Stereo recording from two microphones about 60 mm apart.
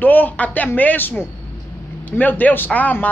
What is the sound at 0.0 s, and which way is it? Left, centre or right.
A woman's voice, left.